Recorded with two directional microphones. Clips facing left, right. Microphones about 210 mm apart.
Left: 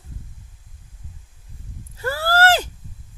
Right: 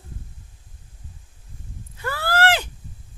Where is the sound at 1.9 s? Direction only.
40° left (ahead or behind).